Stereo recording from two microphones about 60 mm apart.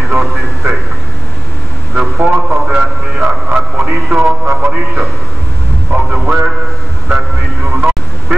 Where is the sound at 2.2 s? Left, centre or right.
Centre.